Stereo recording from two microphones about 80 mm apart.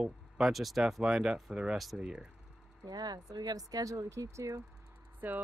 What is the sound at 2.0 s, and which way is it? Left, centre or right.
Speech, centre.